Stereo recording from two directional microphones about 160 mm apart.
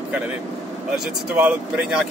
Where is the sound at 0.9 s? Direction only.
5° right (ahead or behind).